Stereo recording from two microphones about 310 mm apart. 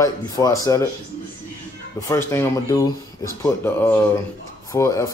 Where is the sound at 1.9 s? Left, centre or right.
Centre.